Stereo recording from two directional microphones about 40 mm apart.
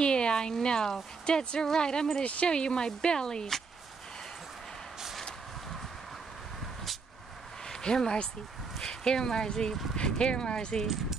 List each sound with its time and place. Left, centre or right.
0.0 s speech: left
7.6 s speech: centre